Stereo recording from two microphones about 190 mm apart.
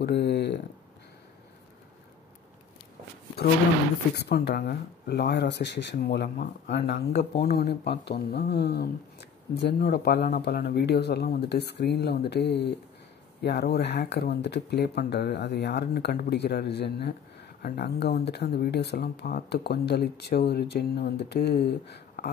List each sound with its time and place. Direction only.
0.0 s speech: 60° left (ahead or behind)
4.1 s speech: 60° left (ahead or behind)
6.9 s speech: 35° left (ahead or behind)
7.3 s speech: 55° left (ahead or behind)